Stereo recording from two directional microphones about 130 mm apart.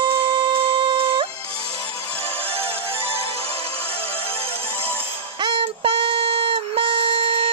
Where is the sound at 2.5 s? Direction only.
50° right (ahead or behind).